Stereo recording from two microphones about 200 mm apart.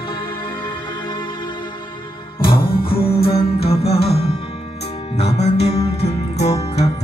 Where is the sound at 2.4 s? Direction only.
45° left (ahead or behind).